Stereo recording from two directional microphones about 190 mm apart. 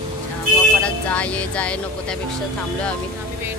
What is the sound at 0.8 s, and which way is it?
Speech, 5° left (ahead or behind).